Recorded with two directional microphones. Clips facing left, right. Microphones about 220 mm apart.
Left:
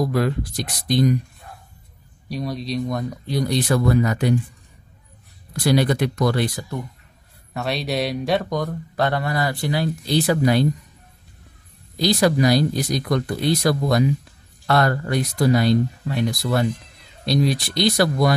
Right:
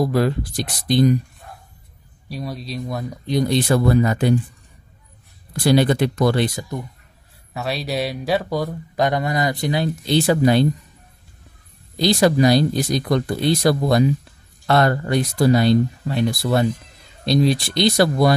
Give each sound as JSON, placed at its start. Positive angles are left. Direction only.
{"t": 0.0, "sound": "speech", "side_deg": -30}
{"t": 2.2, "sound": "speech", "side_deg": 0}
{"t": 3.3, "sound": "speech", "side_deg": -25}
{"t": 5.5, "sound": "speech", "side_deg": -25}
{"t": 7.5, "sound": "speech", "side_deg": 0}
{"t": 12.0, "sound": "speech", "side_deg": -25}